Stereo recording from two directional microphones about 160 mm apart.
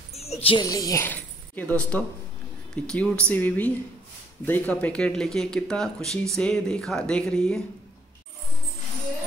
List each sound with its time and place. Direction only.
0.1 s a sound: 40° left (ahead or behind)
0.6 s a woman's voice: 25° left (ahead or behind)
1.0 s speech: 10° left (ahead or behind)